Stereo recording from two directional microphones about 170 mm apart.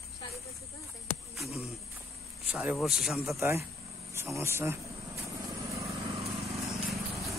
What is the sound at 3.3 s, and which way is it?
Speech, 15° right (ahead or behind).